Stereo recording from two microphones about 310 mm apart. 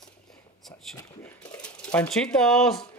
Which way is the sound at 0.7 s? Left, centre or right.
Centre.